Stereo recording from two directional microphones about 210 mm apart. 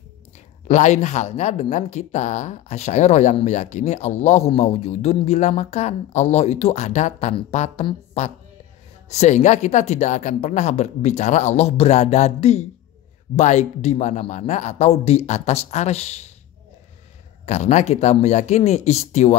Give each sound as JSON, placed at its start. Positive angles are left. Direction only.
{"t": 0.7, "sound": "speech", "side_deg": 35}
{"t": 17.5, "sound": "speech", "side_deg": 35}